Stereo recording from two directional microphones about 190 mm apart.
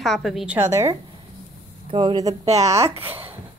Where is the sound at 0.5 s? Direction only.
15° right (ahead or behind); by 3.2 s 30° right (ahead or behind).